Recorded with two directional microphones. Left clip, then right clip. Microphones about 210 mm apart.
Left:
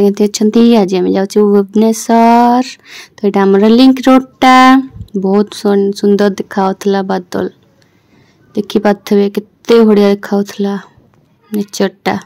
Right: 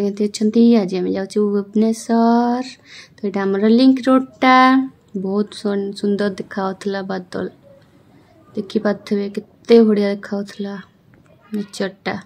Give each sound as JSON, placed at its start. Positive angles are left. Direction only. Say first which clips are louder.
{"t": 0.0, "sound": "speech", "louder": "left 9 dB", "side_deg": 40}
{"t": 8.5, "sound": "speech", "louder": "left 8 dB", "side_deg": 35}